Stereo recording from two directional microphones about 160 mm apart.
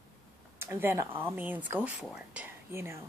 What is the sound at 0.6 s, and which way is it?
Speech, 15° right (ahead or behind).